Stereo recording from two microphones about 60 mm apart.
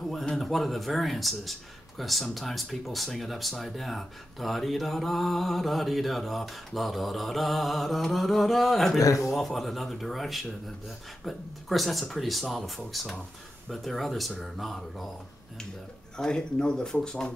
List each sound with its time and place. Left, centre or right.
0.0 s speech: centre
9.0 s speech: left
9.3 s speech: centre
16.2 s speech: centre